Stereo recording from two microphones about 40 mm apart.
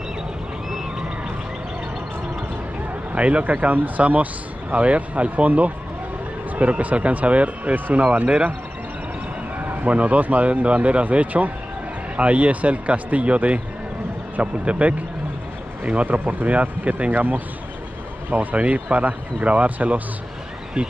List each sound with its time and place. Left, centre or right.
3.2 s speech: right
9.6 s speech: right